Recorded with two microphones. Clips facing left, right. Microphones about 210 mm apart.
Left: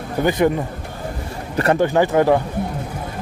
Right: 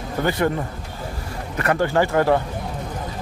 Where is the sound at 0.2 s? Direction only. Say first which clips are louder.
Left 4 dB; 15° left (ahead or behind).